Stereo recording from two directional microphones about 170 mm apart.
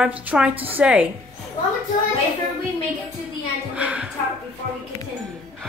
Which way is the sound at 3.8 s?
5° right (ahead or behind).